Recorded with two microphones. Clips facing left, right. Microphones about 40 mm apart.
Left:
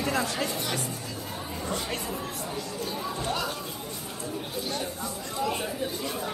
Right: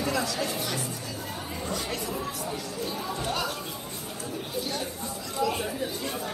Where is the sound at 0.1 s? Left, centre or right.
Left.